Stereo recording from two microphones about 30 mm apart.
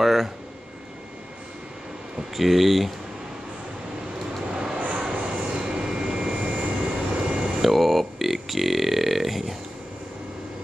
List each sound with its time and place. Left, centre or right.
0.0 s a sound: centre
2.3 s speech: centre
4.5 s vehicle: right
4.7 s vehicle: right
5.4 s vehicle: right
6.4 s vehicle: right
7.6 s burping: centre